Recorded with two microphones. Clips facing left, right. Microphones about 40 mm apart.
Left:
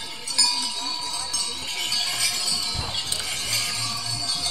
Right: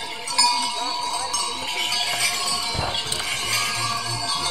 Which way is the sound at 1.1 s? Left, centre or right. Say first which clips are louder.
Right 5 dB; right.